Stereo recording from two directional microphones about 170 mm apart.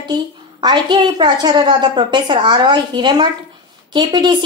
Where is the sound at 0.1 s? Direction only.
25° right (ahead or behind).